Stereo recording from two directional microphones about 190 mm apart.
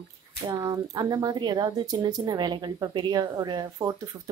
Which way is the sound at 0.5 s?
20° right (ahead or behind).